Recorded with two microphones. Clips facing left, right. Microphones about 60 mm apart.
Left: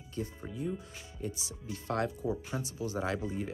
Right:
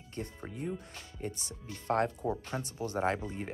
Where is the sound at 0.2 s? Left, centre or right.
Right.